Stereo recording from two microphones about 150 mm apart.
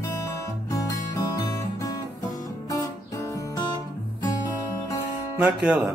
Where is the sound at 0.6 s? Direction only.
20° left (ahead or behind).